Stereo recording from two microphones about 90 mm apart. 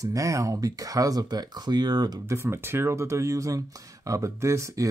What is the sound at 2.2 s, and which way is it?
Speech, 30° right (ahead or behind).